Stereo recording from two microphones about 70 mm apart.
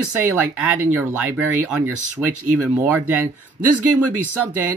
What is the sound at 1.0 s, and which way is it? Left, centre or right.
Speech, right.